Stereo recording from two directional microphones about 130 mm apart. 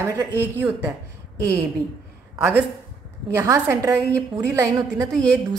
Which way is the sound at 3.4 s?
25° right (ahead or behind).